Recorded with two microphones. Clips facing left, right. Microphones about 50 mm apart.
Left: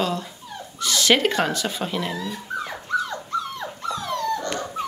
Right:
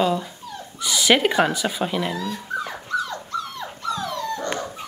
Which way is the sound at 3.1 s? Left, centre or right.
Left.